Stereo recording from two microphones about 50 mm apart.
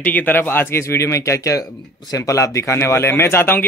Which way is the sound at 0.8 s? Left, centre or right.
Left.